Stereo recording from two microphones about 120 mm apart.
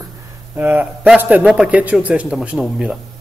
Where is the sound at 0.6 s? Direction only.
15° right (ahead or behind).